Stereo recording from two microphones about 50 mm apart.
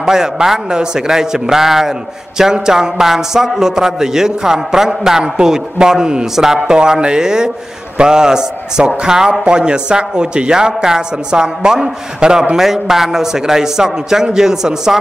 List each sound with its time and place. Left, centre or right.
0.0 s a man's voice: centre